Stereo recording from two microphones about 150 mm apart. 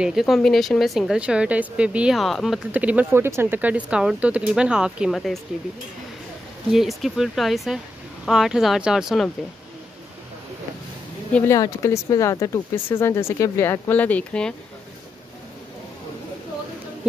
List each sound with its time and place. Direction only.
0.0 s a woman's voice: centre (ahead or behind)
2.7 s speech: 10° right (ahead or behind)
6.7 s a woman's voice: centre (ahead or behind)
11.3 s speech: 20° left (ahead or behind)